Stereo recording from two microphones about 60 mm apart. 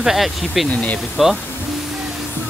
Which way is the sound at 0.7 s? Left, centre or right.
Left.